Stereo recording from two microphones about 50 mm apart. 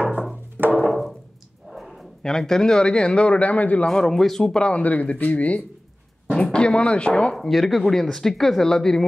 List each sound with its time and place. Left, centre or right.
0.0 s music: right
0.8 s wood block: centre
1.7 s a sound: centre
2.2 s speech: centre; by 3.8 s left
3.8 s speech: centre
4.8 s speech: left
6.3 s speech: centre
7.3 s speech: centre